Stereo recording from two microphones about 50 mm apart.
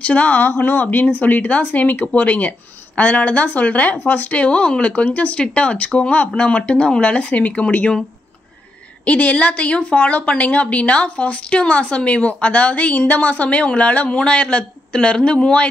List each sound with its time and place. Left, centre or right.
0.0 s a woman's voice: left
9.0 s a woman's voice: left